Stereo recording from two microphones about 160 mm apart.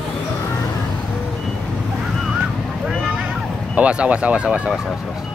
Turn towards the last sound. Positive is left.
turn(degrees=-5)  # may be behind; listen again after turning